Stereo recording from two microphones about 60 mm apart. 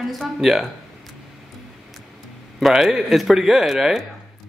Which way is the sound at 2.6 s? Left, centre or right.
Centre.